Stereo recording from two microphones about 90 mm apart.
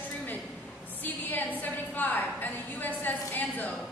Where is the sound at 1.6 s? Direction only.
20° left (ahead or behind).